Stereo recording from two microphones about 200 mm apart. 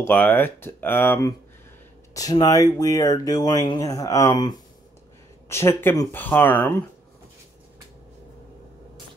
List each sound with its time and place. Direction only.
0.0 s speech: 10° left (ahead or behind)